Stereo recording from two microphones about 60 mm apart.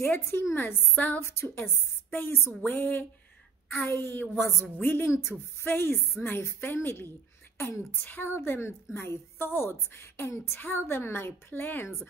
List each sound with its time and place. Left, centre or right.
0.0 s a woman's voice: left
0.9 s speech: left
1.2 s a woman's voice: left